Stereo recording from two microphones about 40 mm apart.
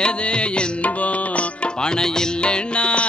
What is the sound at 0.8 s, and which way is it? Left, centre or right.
Music, left.